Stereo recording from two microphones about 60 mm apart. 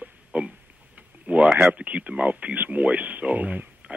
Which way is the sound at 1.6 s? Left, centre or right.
Right.